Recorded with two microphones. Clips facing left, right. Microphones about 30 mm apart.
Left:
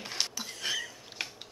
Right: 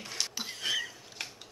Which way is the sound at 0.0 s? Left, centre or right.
Left.